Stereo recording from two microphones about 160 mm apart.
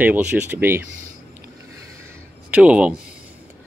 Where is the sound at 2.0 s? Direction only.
10° right (ahead or behind).